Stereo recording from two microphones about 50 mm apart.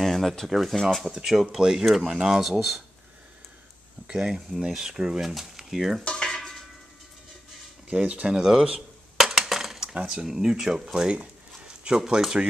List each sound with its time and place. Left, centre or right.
0.0 s speech: centre
4.1 s speech: centre
6.0 s stir: centre
7.9 s speech: right
8.3 s speech: centre
9.1 s a sound: centre
10.0 s speech: centre
11.1 s a sound: right